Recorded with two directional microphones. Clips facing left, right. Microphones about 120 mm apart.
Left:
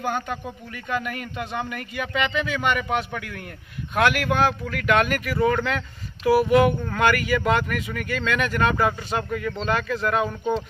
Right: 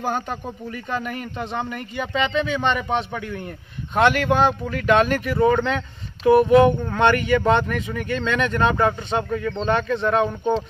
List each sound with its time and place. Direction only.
0.0 s speech: 35° right (ahead or behind)